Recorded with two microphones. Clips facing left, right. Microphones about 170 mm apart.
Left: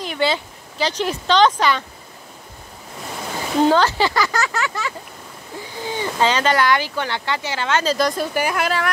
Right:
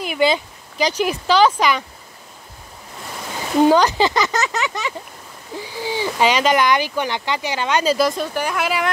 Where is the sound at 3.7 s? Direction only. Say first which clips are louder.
Right 2 dB; 15° right (ahead or behind).